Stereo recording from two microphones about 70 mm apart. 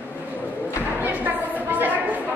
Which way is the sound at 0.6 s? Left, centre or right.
Right.